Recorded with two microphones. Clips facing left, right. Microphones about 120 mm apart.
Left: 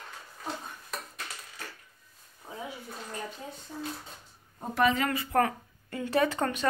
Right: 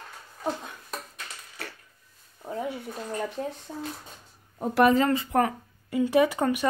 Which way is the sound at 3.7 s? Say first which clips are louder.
Right 3 dB; 55° right (ahead or behind).